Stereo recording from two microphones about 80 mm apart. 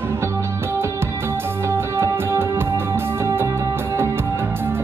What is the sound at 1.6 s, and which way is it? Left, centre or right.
Music, right.